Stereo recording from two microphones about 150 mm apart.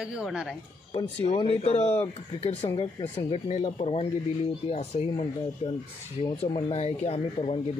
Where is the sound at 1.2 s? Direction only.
40° left (ahead or behind).